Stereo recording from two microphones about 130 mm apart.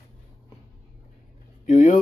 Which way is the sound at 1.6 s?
70° left (ahead or behind).